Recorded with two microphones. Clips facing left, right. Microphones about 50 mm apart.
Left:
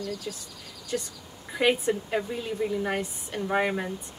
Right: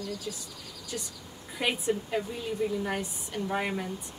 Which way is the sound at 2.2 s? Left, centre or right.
Left.